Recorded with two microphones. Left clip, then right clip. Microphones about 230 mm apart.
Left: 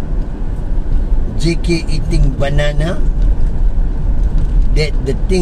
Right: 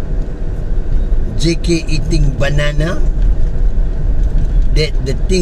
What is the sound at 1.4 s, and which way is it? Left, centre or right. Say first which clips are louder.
Speech: right 2 dB; right.